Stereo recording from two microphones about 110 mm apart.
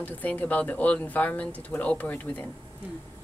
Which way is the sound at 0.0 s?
15° left (ahead or behind).